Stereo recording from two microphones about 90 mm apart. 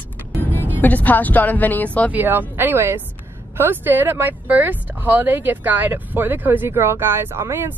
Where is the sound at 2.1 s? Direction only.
20° right (ahead or behind).